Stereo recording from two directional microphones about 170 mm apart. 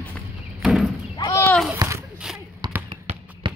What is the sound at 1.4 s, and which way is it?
Speech, 5° left (ahead or behind).